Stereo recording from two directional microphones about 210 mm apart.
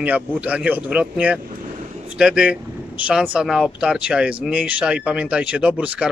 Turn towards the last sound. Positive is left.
turn(degrees=-5)  # may be behind; listen again after turning